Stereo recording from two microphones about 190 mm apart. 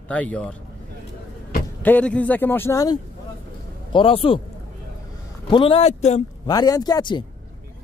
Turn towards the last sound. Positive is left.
turn(degrees=20)  # may be behind; listen again after turning